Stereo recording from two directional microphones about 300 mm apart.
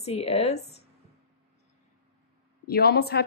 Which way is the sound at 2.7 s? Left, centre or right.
Left.